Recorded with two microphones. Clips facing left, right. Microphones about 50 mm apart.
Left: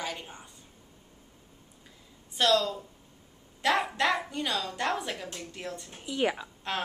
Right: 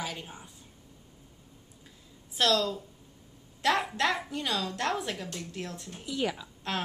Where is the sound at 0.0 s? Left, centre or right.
Centre.